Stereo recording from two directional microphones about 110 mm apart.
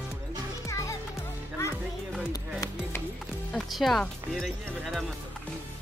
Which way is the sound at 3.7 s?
Centre (ahead or behind).